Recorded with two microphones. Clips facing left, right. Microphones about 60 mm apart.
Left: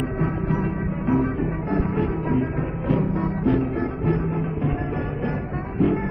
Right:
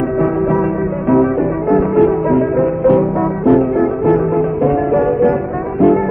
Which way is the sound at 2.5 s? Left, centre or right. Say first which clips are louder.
Right 13 dB; right.